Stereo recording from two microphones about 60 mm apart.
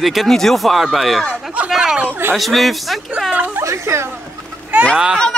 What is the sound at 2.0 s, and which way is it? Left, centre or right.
Speech, right.